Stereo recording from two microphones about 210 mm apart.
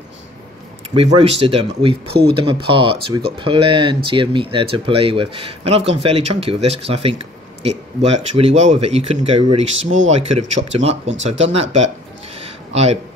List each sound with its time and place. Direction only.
0.9 s speech: 25° right (ahead or behind)